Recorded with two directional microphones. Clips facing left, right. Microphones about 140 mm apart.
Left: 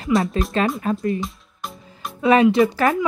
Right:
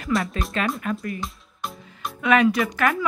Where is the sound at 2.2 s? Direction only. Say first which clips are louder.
Left 5 dB; 30° left (ahead or behind).